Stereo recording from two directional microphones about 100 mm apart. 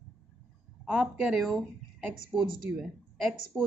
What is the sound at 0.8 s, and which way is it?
Speech, 15° right (ahead or behind).